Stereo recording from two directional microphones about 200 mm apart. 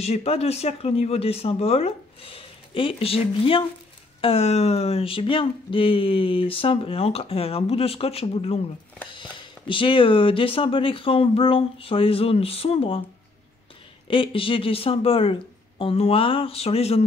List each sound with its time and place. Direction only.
0.0 s speech: 30° left (ahead or behind)
14.0 s speech: 25° left (ahead or behind)